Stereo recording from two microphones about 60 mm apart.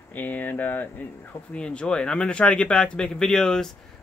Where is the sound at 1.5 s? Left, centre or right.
Centre.